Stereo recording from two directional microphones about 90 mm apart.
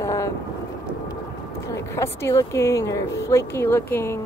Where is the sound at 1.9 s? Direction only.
30° left (ahead or behind).